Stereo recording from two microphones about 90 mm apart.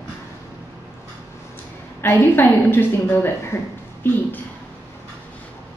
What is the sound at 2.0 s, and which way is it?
A woman's voice, 25° left (ahead or behind).